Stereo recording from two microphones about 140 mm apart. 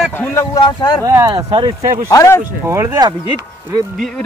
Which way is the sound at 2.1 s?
20° left (ahead or behind).